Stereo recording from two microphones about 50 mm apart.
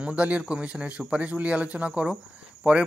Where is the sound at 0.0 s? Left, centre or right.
Right.